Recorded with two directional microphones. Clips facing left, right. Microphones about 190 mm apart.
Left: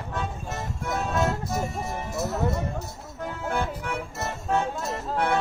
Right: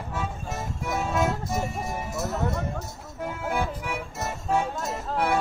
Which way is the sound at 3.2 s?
10° right (ahead or behind).